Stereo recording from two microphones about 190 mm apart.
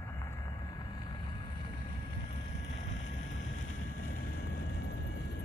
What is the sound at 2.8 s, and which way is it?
Vehicle, 40° left (ahead or behind).